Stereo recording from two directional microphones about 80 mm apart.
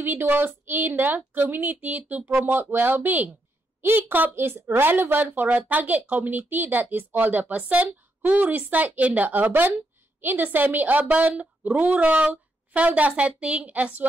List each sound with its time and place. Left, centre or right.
0.0 s a woman's voice: right